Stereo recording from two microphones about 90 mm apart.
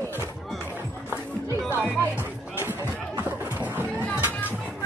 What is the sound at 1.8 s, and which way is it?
Music, 20° left (ahead or behind).